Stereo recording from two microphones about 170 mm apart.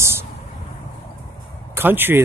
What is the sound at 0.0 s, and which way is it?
Vehicle, 15° right (ahead or behind).